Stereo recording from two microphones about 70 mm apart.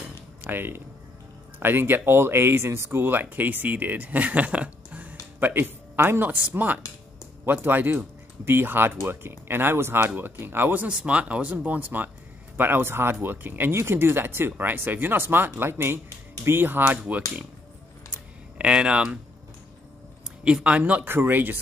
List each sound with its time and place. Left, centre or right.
0.4 s speech: right
5.4 s speech: right
18.6 s speech: centre
20.4 s speech: centre
21.0 s speech: right